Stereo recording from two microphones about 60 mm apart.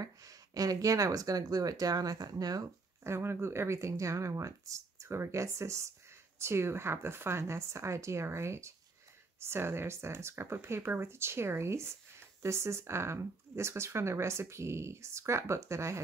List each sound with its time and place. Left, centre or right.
0.0 s speech: right
3.1 s speech: right